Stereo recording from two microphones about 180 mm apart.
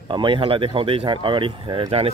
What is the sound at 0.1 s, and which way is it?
Speech, 25° right (ahead or behind).